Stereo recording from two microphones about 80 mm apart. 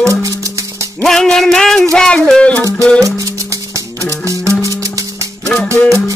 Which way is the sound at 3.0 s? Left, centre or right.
Right.